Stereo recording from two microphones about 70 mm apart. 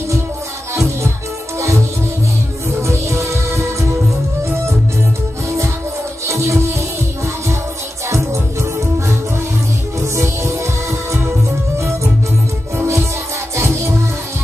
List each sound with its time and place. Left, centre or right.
0.7 s music: right
2.8 s music: right
6.2 s music: right
8.1 s music: right
10.1 s music: right
12.7 s music: right